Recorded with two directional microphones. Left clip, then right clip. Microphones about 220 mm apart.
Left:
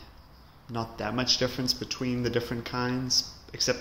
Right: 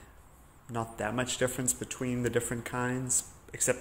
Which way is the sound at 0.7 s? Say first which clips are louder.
Left 1 dB; 20° right (ahead or behind).